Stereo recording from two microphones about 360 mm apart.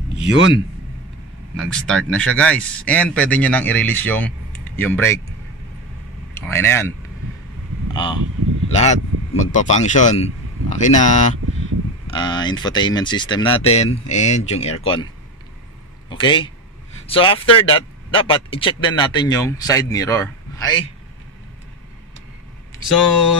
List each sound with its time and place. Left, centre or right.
0.2 s a man's voice: right
1.6 s speech: centre
6.3 s speech: centre
7.9 s speech: centre
16.1 s speech: centre